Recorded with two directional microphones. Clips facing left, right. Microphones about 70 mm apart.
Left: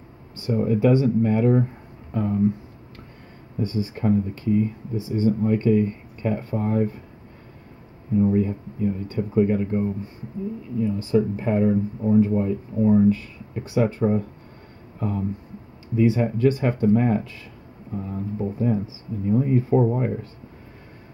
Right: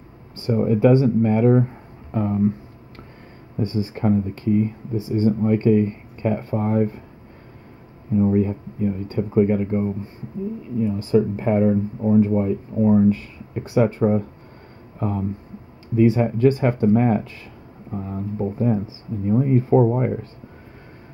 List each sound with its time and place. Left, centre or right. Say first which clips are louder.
0.5 s speech: right 3 dB; right
3.5 s speech: right 2 dB; right
8.2 s speech: right 2 dB; right